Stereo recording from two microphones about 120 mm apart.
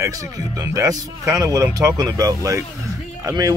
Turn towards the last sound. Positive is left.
turn(degrees=-30)  # may be behind; listen again after turning